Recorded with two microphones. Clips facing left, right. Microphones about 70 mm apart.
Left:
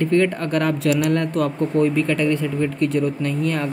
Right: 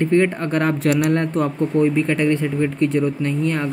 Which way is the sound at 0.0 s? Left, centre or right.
Right.